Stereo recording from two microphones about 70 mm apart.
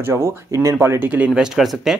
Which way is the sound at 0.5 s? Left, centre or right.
Right.